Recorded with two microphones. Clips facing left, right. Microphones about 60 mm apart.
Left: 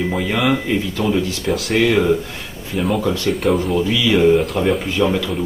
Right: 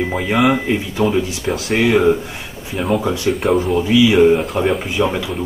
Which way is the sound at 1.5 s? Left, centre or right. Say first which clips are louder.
Even; centre.